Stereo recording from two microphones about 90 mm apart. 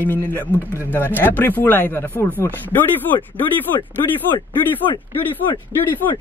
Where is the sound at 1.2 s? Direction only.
20° left (ahead or behind).